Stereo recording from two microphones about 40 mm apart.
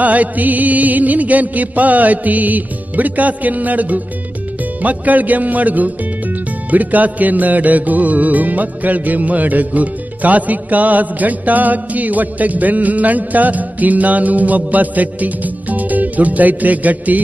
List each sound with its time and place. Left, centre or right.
0.0 s speech: right